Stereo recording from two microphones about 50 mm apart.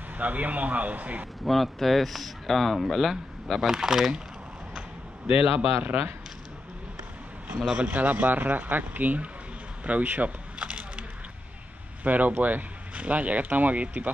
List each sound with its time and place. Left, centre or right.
0.2 s speech: right
1.4 s speech: centre
5.9 s speech: right
7.6 s speech: centre
7.9 s speech: right
10.6 s a sound: centre
12.0 s speech: right